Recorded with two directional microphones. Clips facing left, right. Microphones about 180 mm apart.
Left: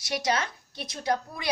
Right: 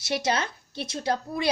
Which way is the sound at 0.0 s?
25° right (ahead or behind).